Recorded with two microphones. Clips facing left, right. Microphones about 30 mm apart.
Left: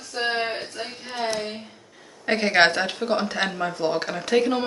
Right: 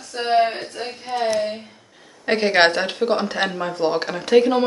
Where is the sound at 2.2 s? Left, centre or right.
Centre.